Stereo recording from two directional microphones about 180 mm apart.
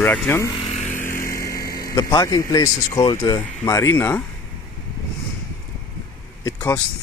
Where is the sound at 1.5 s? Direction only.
60° left (ahead or behind).